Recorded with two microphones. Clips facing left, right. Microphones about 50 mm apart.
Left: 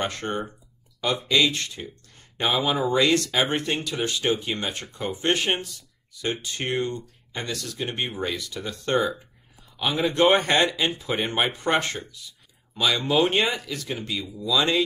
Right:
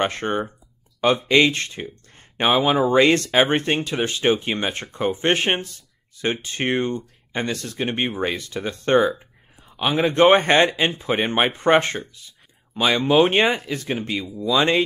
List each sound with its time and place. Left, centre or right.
0.0 s speech: right
14.3 s speech: right